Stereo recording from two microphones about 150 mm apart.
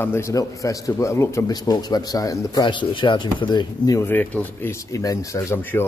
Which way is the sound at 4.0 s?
10° left (ahead or behind).